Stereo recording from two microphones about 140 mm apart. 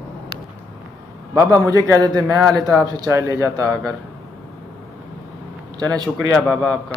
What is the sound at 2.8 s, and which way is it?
Speech, 25° right (ahead or behind).